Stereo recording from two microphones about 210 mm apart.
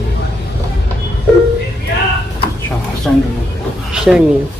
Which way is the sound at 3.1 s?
5° left (ahead or behind).